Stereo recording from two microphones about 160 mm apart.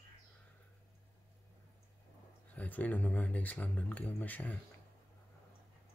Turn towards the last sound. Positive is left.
turn(degrees=10)  # may be behind; listen again after turning